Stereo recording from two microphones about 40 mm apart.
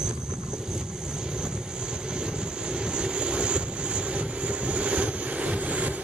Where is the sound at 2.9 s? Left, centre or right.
Right.